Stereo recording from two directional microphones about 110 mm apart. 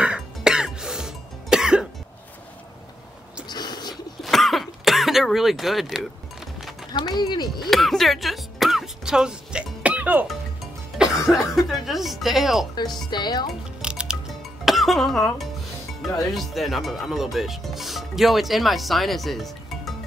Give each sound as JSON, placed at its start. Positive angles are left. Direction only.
{"t": 0.0, "sound": "cough", "side_deg": -10}
{"t": 3.4, "sound": "a sound", "side_deg": 40}
{"t": 4.2, "sound": "throat clearing", "side_deg": 0}
{"t": 7.2, "sound": "speech", "side_deg": 40}
{"t": 7.7, "sound": "music", "side_deg": 0}
{"t": 10.2, "sound": "speech", "side_deg": 0}
{"t": 13.1, "sound": "speech", "side_deg": 40}
{"t": 13.5, "sound": "music", "side_deg": -10}
{"t": 14.6, "sound": "speech", "side_deg": 0}